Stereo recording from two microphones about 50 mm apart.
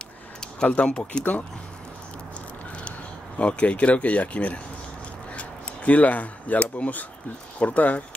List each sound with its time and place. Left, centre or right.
0.7 s speech: left
3.3 s speech: left